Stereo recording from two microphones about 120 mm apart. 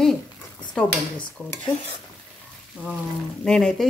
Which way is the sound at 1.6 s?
55° left (ahead or behind).